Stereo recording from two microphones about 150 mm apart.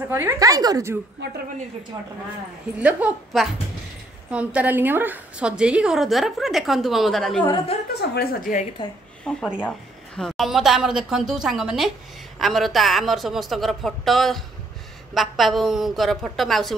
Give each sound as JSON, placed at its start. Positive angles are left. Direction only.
{"t": 0.1, "sound": "speech", "side_deg": -15}
{"t": 2.8, "sound": "a woman's voice", "side_deg": -10}
{"t": 7.9, "sound": "a woman's voice", "side_deg": 90}
{"t": 9.3, "sound": "a woman's voice", "side_deg": 5}